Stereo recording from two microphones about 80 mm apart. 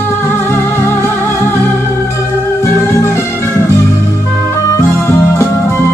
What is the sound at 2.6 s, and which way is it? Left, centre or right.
Music, left.